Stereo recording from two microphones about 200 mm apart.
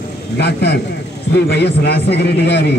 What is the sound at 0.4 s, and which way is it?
A man's voice, 55° left (ahead or behind).